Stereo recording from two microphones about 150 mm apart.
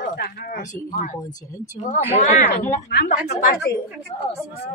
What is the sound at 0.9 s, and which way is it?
Speech, 60° left (ahead or behind).